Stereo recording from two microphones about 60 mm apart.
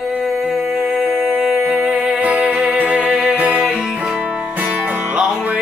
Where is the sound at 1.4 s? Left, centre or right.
Centre.